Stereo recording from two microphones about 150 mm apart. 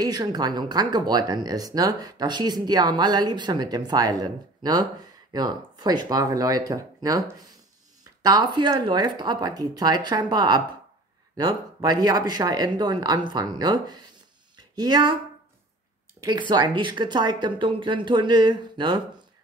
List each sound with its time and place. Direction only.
0.0 s speech: 25° right (ahead or behind)
16.2 s speech: 30° right (ahead or behind)